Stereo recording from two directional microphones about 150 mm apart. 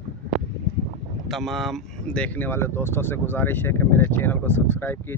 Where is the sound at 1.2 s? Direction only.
Centre (ahead or behind).